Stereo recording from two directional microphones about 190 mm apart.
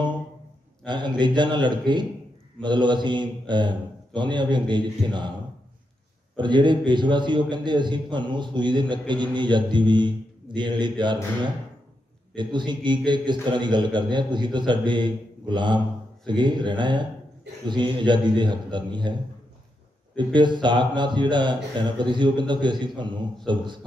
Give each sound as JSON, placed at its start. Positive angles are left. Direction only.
{"t": 0.8, "sound": "a man's voice", "side_deg": -25}
{"t": 6.3, "sound": "a man's voice", "side_deg": -25}
{"t": 12.4, "sound": "a man's voice", "side_deg": -25}
{"t": 20.3, "sound": "a man's voice", "side_deg": -25}